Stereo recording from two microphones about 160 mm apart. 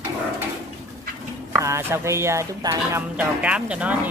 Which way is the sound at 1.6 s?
15° right (ahead or behind).